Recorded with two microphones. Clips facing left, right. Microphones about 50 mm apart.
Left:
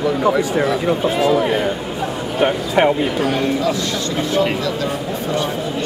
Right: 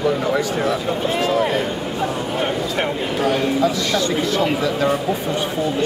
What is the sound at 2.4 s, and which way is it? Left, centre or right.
Speech, left.